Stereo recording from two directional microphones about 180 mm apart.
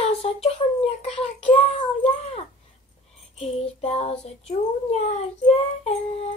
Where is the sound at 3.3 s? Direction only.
35° left (ahead or behind).